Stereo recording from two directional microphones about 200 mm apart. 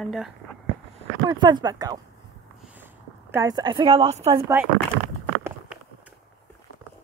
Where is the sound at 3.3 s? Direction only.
20° right (ahead or behind).